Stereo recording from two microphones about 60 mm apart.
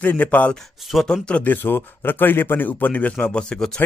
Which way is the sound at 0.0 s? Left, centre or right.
Left.